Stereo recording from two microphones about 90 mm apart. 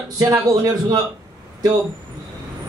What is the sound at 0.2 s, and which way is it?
Speech, 40° right (ahead or behind).